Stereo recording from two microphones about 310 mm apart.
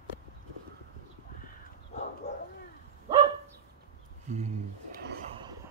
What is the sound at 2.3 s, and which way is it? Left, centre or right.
Bow-wow, left.